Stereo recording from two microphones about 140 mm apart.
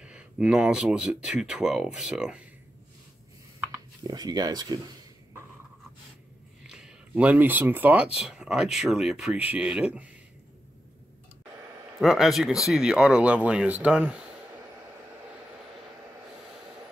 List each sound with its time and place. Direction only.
0.0 s speech: 10° right (ahead or behind)
4.0 s speech: 30° right (ahead or behind)
6.7 s speech: 5° right (ahead or behind)
12.0 s speech: centre (ahead or behind)